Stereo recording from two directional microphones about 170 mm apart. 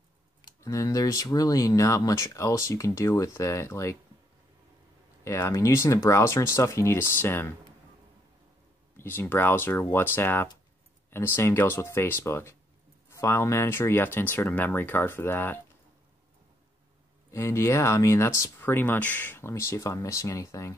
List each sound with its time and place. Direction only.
0.4 s speech: 20° left (ahead or behind)
5.2 s speech: 15° left (ahead or behind)
8.9 s speech: 15° left (ahead or behind)
17.3 s speech: 15° left (ahead or behind)